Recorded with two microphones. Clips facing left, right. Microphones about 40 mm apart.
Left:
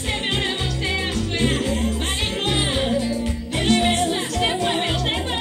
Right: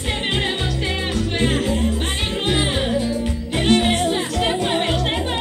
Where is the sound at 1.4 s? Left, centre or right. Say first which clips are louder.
Right 2 dB; right.